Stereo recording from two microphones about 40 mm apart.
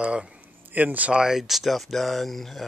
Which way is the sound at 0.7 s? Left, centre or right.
Right.